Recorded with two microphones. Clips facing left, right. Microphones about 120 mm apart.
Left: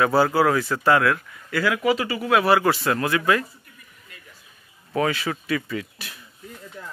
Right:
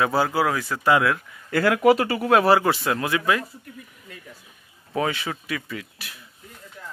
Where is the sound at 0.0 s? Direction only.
15° right (ahead or behind).